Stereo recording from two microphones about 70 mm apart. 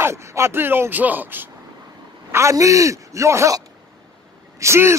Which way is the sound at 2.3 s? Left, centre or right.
Right.